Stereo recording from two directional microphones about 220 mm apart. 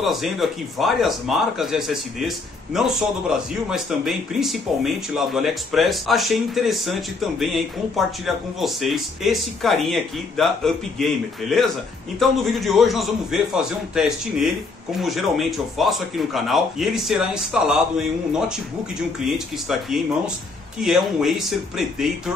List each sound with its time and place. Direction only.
0.0 s speech: centre (ahead or behind)
12.2 s speech: centre (ahead or behind)